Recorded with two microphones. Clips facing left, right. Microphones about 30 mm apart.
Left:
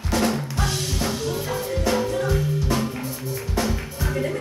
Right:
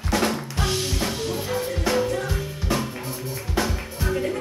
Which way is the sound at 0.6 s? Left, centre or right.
Right.